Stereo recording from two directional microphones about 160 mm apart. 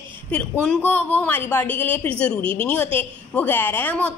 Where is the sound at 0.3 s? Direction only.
10° left (ahead or behind).